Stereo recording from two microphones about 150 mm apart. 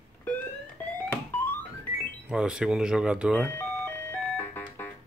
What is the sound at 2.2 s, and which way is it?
Speech, 5° right (ahead or behind).